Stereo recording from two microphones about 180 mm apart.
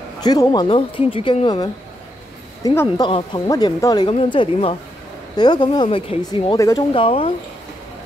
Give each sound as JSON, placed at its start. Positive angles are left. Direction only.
{"t": 0.2, "sound": "speech", "side_deg": 20}
{"t": 2.6, "sound": "speech", "side_deg": 15}
{"t": 3.0, "sound": "speech", "side_deg": 30}